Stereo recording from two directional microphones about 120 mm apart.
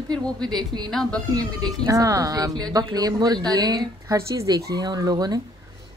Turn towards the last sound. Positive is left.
turn(degrees=-30)  # may be behind; listen again after turning